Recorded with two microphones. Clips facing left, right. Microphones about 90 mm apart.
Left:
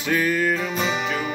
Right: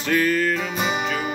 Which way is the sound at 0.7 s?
15° right (ahead or behind).